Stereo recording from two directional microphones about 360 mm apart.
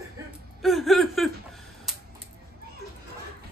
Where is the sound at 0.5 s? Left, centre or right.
Centre.